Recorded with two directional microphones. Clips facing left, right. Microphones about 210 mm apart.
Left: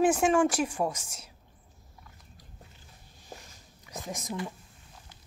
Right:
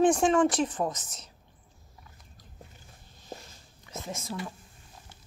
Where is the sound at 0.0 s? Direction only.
5° left (ahead or behind).